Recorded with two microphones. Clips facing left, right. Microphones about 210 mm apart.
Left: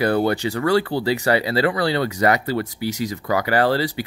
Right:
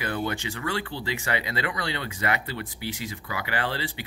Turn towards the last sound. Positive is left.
turn(degrees=40)  # may be behind; listen again after turning